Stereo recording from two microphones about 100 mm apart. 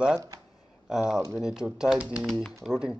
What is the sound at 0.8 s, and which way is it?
Speech, 5° right (ahead or behind).